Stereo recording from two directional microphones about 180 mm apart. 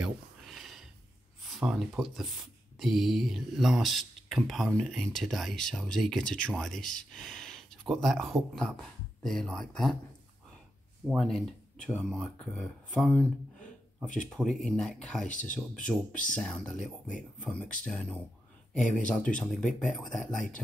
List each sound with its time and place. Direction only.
0.0 s a sound: centre (ahead or behind)
1.4 s speech: 5° right (ahead or behind)
11.1 s speech: centre (ahead or behind)
14.0 s speech: 45° left (ahead or behind)
14.3 s speech: centre (ahead or behind)